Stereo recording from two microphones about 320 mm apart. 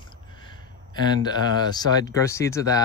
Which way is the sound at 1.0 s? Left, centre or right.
Centre.